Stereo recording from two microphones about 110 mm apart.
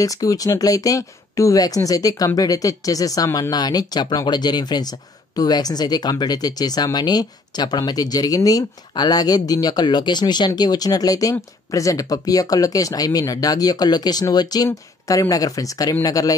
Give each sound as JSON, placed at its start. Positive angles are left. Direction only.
{"t": 0.0, "sound": "speech", "side_deg": 30}